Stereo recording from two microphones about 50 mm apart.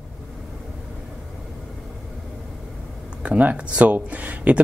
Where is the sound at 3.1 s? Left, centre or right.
Right.